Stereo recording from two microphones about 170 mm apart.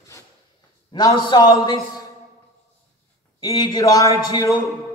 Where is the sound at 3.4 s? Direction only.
25° left (ahead or behind).